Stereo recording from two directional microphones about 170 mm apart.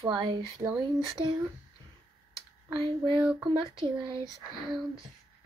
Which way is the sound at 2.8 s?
25° right (ahead or behind).